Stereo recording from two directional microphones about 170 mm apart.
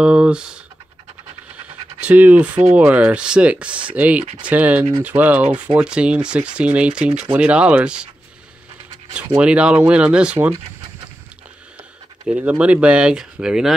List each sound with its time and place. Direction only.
0.0 s speech: 5° right (ahead or behind)
2.0 s speech: 10° right (ahead or behind)
5.4 s speech: 35° right (ahead or behind)
5.8 s speech: 5° right (ahead or behind)
9.4 s speech: 5° right (ahead or behind)
12.3 s speech: 5° right (ahead or behind)